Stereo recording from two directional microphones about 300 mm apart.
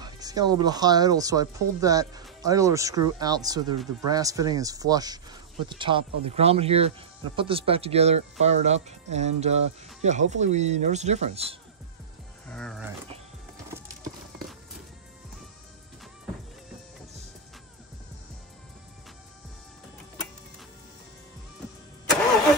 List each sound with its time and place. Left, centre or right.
0.0 s speech: centre
12.4 s speech: centre